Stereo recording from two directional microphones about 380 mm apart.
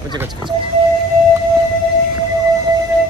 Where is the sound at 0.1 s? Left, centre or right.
Centre.